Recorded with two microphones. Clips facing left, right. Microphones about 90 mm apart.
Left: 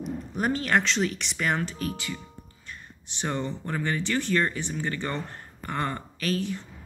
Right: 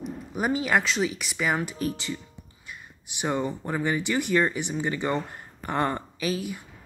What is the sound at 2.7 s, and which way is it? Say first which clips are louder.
A woman's voice: even; 10° right (ahead or behind).